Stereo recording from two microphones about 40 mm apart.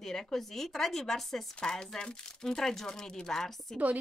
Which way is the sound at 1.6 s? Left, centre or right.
Centre.